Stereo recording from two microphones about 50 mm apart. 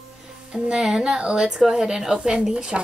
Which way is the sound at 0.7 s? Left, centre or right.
Centre.